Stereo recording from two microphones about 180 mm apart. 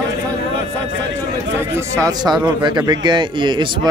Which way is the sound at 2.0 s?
20° right (ahead or behind).